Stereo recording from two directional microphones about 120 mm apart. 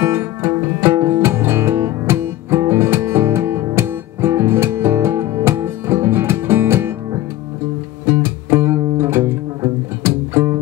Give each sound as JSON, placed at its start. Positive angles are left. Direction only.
{"t": 0.0, "sound": "music", "side_deg": -20}
{"t": 8.0, "sound": "music", "side_deg": -20}